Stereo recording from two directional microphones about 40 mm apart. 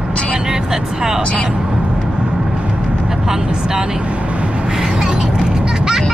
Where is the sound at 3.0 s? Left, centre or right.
Centre.